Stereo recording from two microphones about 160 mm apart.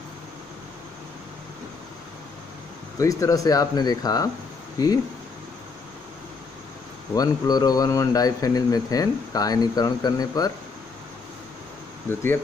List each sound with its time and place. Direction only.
3.0 s speech: 20° left (ahead or behind)
7.2 s speech: 25° left (ahead or behind)
12.1 s speech: 15° left (ahead or behind)